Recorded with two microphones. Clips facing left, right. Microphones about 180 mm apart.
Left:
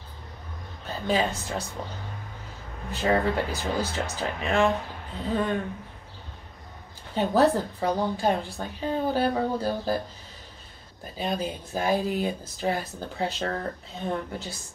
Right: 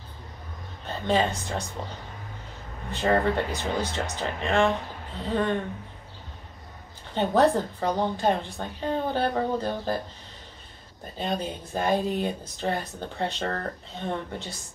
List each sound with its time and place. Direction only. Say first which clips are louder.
0.8 s a woman's voice: right 1 dB; 5° left (ahead or behind)
2.9 s a woman's voice: right 1 dB; 5° left (ahead or behind)
7.2 s a woman's voice: even; 5° left (ahead or behind)
11.1 s speech: even; 5° left (ahead or behind)